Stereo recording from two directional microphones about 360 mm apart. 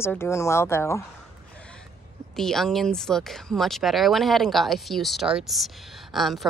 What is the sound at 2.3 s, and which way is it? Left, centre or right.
Speech, centre.